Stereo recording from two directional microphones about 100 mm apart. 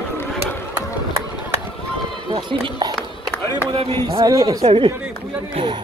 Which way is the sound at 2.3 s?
45° right (ahead or behind).